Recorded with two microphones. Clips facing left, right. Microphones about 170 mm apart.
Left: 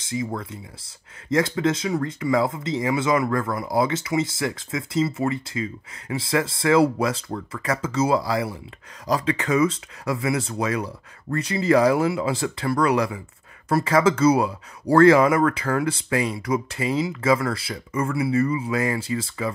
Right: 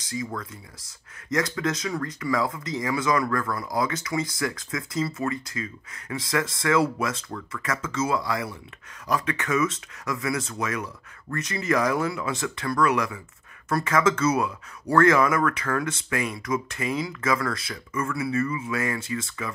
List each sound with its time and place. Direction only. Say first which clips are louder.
0.0 s speech: left 4 dB; 25° left (ahead or behind)